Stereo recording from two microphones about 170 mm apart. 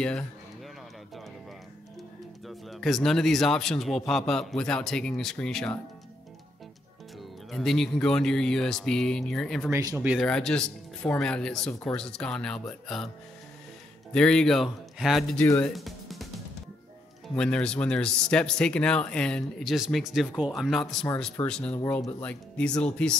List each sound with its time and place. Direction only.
2.4 s speech: centre (ahead or behind)
7.5 s speech: centre (ahead or behind)
9.7 s speech: 15° right (ahead or behind)
10.2 s speech: 5° left (ahead or behind)
14.1 s speech: 5° left (ahead or behind)
15.3 s speech: 10° left (ahead or behind)
15.7 s music: centre (ahead or behind)
17.4 s speech: 5° left (ahead or behind)